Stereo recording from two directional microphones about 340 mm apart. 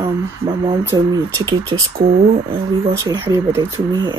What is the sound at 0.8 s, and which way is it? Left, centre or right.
Speech, centre.